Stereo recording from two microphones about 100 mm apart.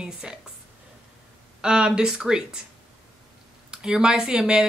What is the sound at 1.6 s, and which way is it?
Speech, 10° right (ahead or behind).